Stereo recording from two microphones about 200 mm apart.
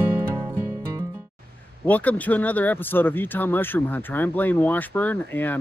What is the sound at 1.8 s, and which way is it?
Speech, 10° left (ahead or behind).